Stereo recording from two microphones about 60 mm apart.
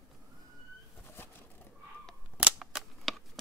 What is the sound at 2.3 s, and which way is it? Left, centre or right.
Cap gun, centre.